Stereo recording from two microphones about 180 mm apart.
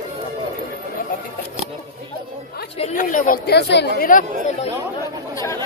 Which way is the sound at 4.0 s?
50° left (ahead or behind).